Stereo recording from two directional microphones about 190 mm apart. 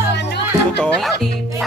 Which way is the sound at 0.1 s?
65° left (ahead or behind).